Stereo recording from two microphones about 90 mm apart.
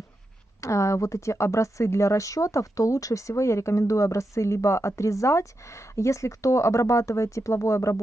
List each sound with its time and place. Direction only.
0.6 s speech: 35° left (ahead or behind)